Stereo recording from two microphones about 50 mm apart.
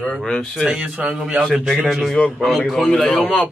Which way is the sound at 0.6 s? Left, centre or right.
Centre.